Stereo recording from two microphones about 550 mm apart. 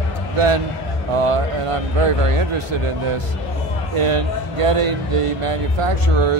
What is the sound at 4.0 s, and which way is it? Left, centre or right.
Speech, right.